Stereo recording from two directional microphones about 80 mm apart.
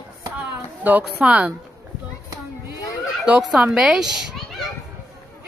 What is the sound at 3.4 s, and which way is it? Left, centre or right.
Speech, centre.